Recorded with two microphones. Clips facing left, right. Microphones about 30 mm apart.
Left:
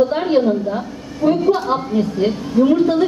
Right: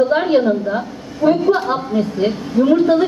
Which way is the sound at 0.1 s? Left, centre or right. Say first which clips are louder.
Right 2 dB; centre.